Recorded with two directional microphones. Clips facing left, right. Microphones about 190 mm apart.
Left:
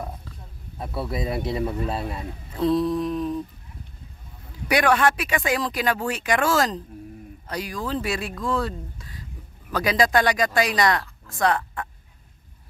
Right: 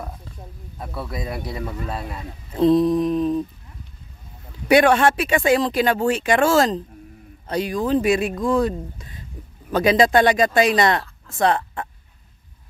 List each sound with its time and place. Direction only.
0.7 s a man's voice: 25° left (ahead or behind)
2.5 s mantra: 20° right (ahead or behind)
4.6 s speech: 25° right (ahead or behind)